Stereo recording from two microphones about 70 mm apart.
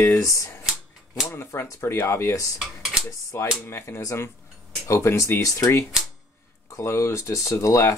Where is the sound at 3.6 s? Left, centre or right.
Left.